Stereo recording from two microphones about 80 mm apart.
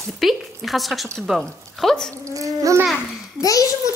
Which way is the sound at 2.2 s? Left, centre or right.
Right.